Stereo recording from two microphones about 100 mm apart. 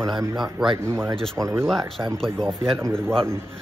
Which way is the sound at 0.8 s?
25° right (ahead or behind).